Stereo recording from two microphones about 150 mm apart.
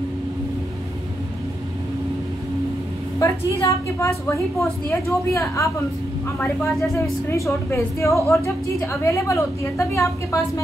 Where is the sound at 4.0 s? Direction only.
20° left (ahead or behind).